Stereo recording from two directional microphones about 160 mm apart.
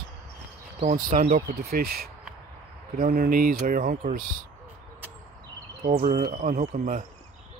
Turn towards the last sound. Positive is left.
turn(degrees=-50)  # may be behind; listen again after turning